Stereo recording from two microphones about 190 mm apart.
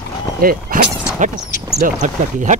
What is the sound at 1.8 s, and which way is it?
Speech, 40° right (ahead or behind).